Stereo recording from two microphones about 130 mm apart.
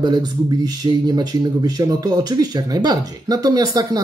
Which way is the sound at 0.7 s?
30° right (ahead or behind).